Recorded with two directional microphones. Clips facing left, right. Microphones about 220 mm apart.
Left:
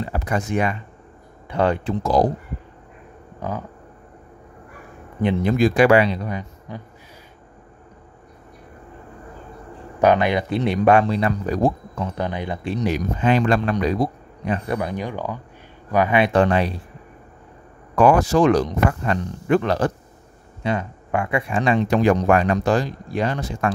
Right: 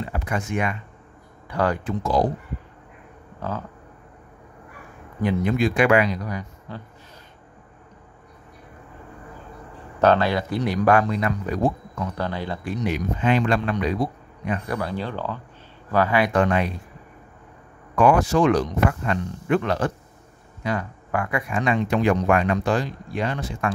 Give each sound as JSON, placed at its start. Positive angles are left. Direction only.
{"t": 0.0, "sound": "speech", "side_deg": 35}
{"t": 1.5, "sound": "speech", "side_deg": 25}
{"t": 2.0, "sound": "speech", "side_deg": 40}
{"t": 3.3, "sound": "speech", "side_deg": 15}
{"t": 5.2, "sound": "speech", "side_deg": 30}
{"t": 9.9, "sound": "speech", "side_deg": 15}
{"t": 12.2, "sound": "speech", "side_deg": 20}
{"t": 12.7, "sound": "speech", "side_deg": 40}
{"t": 14.8, "sound": "speech", "side_deg": 15}
{"t": 17.9, "sound": "speech", "side_deg": 40}
{"t": 20.6, "sound": "speech", "side_deg": 25}